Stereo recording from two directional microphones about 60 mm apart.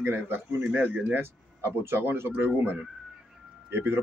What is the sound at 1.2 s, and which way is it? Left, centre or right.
Speech, right.